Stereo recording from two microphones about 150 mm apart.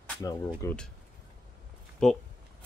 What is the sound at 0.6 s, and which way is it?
Speech, 20° left (ahead or behind).